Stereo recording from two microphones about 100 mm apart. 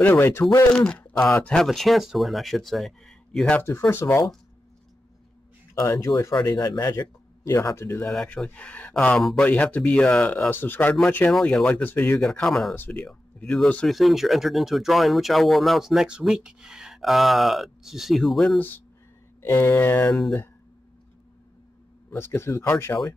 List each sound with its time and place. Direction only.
0.0 s speech: 20° left (ahead or behind)
0.7 s speech: 15° left (ahead or behind)
3.9 s speech: 25° left (ahead or behind)
5.8 s speech: 30° left (ahead or behind)
6.4 s speech: 40° left (ahead or behind); by 8.1 s 25° left (ahead or behind)
8.1 s speech: 5° left (ahead or behind)
10.5 s speech: 20° left (ahead or behind)
11.3 s speech: 5° left (ahead or behind)
12.2 s speech: 5° left (ahead or behind)
13.8 s speech: centre (ahead or behind)
19.4 s speech: 25° left (ahead or behind)
22.1 s speech: 25° left (ahead or behind)